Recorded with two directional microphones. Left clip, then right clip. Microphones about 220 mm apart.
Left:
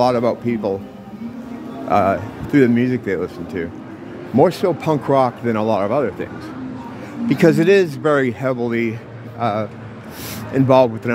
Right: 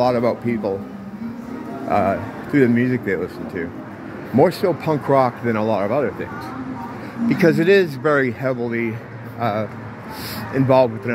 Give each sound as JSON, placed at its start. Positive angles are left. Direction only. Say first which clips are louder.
{"t": 0.0, "sound": "speech", "louder": "left 2 dB", "side_deg": 10}
{"t": 1.9, "sound": "speech", "louder": "left 3 dB", "side_deg": 15}
{"t": 7.2, "sound": "speech", "louder": "left 2 dB", "side_deg": 15}